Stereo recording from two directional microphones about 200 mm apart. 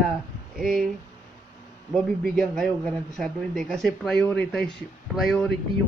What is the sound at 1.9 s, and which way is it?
A man's voice, 5° left (ahead or behind).